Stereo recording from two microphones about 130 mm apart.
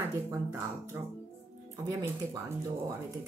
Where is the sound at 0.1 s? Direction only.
20° right (ahead or behind).